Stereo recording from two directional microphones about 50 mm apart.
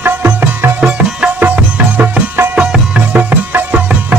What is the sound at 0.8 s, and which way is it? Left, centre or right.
Music, right.